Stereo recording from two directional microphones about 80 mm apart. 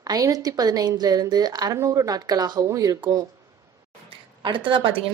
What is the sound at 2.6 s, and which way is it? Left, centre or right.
Speech, right.